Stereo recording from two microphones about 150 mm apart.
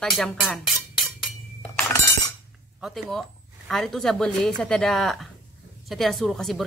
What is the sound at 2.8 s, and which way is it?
A woman's voice, centre (ahead or behind).